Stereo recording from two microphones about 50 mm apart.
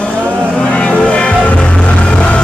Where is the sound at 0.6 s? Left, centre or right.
Left.